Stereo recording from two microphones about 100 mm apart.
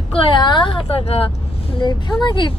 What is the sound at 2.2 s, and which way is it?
Speech, 55° left (ahead or behind).